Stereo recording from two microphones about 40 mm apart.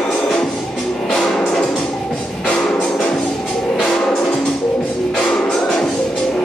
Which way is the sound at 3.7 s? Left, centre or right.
Centre.